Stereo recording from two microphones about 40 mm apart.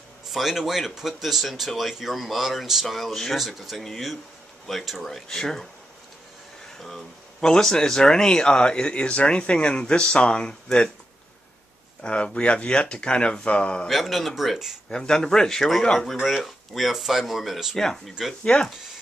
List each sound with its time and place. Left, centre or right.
0.3 s speech: centre
7.3 s speech: centre
12.0 s speech: left
13.8 s speech: centre
14.9 s speech: centre
17.7 s speech: centre
18.4 s speech: left